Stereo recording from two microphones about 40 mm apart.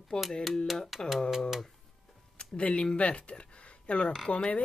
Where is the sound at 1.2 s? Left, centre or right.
Centre.